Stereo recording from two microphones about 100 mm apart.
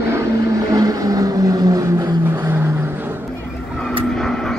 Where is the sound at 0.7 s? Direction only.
35° right (ahead or behind).